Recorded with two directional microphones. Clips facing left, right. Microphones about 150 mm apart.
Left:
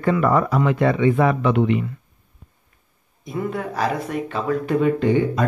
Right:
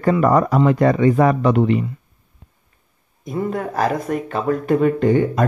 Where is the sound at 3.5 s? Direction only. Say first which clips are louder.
Right 4 dB; 45° right (ahead or behind).